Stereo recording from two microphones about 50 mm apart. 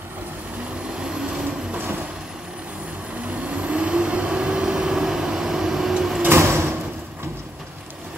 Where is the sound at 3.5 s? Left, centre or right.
Right.